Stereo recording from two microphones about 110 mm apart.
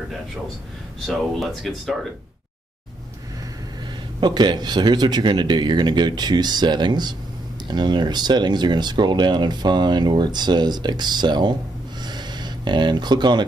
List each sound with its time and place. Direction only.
1.0 s speech: centre (ahead or behind)
4.2 s speech: 40° right (ahead or behind)
12.0 s a sound: 40° right (ahead or behind)